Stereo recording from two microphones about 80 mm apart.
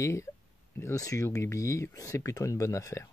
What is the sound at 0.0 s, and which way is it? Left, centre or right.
Speech, left.